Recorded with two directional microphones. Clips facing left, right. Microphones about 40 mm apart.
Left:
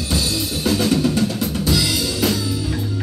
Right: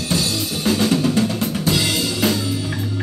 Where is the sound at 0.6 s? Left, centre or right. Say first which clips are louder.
Right 1 dB; centre.